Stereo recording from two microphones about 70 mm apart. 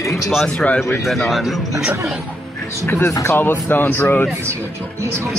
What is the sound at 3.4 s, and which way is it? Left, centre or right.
Speech, left.